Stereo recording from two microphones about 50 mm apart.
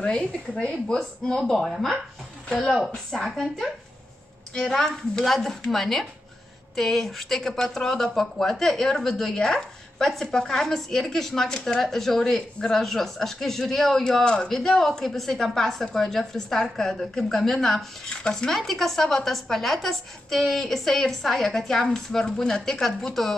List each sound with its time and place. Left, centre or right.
0.0 s speech: centre
1.6 s a woman's voice: centre
18.1 s speech: centre
18.5 s speech: centre